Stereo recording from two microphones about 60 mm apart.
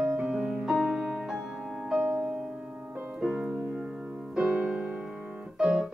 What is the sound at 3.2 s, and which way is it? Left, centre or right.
Music, centre.